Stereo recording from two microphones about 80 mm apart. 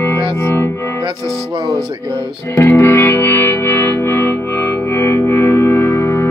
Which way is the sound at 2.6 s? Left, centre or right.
Left.